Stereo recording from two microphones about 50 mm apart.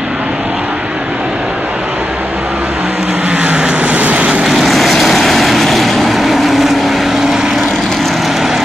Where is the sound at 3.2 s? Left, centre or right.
Right.